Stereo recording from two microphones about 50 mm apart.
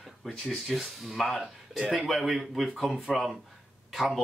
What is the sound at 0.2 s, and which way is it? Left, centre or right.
A man's voice, centre.